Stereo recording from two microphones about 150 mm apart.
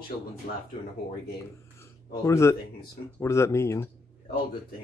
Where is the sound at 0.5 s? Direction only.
80° left.